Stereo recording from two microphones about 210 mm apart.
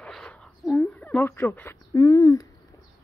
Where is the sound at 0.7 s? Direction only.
15° left (ahead or behind).